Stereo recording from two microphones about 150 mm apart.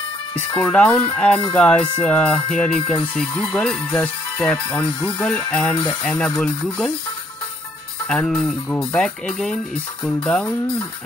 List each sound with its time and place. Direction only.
0.6 s speech: 5° left (ahead or behind)
8.1 s speech: 5° left (ahead or behind)